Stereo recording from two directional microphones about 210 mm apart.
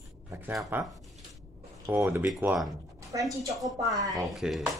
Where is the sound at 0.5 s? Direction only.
Centre (ahead or behind).